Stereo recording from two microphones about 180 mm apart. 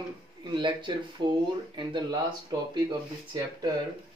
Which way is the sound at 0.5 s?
25° right (ahead or behind).